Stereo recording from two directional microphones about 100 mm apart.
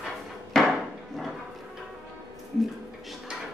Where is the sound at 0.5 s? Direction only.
5° left (ahead or behind).